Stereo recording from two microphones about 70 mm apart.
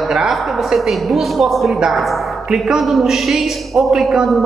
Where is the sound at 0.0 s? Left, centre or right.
Centre.